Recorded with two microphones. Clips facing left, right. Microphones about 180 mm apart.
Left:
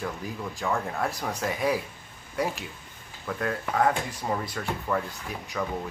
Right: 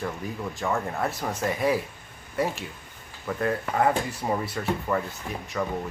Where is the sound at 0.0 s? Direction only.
Centre (ahead or behind).